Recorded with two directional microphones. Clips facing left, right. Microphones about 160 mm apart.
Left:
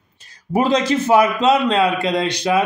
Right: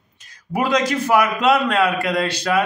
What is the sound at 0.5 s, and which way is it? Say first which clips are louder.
A man's voice: left 3 dB; 25° left (ahead or behind).